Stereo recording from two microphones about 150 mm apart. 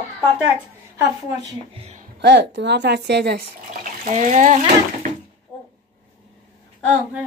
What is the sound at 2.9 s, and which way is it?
Speech, 90° right.